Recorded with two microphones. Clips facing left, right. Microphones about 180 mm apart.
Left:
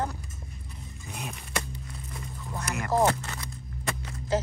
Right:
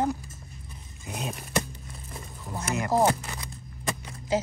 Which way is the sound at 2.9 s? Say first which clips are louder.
Even; 10° right (ahead or behind).